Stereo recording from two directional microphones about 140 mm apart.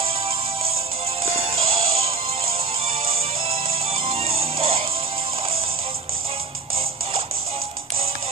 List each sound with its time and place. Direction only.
1.5 s music: 45° right (ahead or behind)